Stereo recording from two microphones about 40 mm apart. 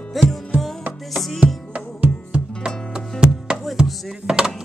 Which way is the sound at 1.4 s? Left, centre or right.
Right.